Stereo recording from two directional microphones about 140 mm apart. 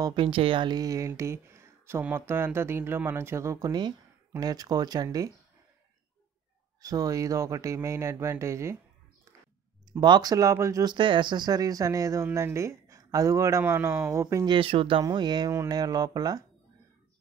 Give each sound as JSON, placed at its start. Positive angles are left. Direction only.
{"t": 0.0, "sound": "speech", "side_deg": -35}
{"t": 6.8, "sound": "speech", "side_deg": -25}
{"t": 9.9, "sound": "speech", "side_deg": -30}
{"t": 14.5, "sound": "speech", "side_deg": -40}